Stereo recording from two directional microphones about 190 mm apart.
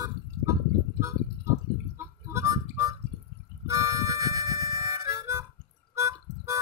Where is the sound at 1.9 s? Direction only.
15° right (ahead or behind).